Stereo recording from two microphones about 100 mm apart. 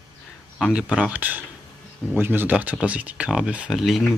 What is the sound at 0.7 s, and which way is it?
Speech, 10° right (ahead or behind).